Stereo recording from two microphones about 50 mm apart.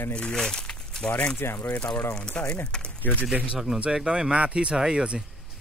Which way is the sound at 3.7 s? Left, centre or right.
Right.